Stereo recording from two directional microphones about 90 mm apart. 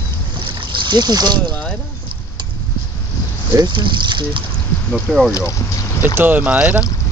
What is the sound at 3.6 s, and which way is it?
Speech, 60° right (ahead or behind).